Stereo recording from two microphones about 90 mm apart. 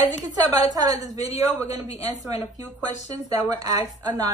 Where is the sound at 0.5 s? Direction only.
45° right (ahead or behind).